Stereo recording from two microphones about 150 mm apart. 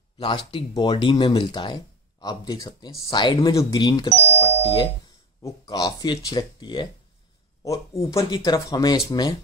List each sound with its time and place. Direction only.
0.2 s speech: 35° left (ahead or behind)